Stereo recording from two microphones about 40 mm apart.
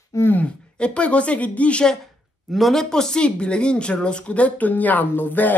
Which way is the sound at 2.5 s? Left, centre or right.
Centre.